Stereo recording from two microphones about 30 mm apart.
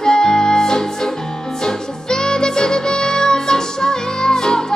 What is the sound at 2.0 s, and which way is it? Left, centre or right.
Music, left.